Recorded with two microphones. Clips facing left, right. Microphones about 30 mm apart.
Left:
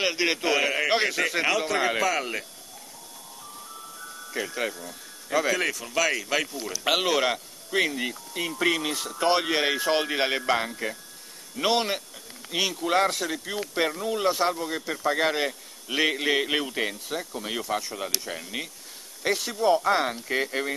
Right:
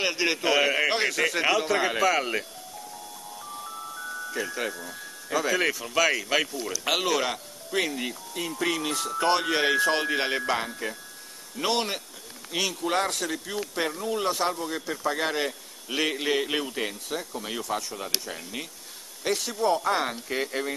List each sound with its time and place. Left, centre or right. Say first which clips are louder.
0.0 s a man's voice: even; centre
4.4 s speech: left 1 dB; centre
5.3 s a man's voice: left 1 dB; centre
5.6 s a man's voice: right 2 dB; centre
6.7 s a man's voice: left 3 dB; centre